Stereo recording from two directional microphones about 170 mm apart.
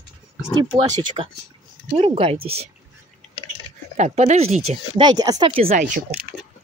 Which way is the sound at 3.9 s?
45° right (ahead or behind).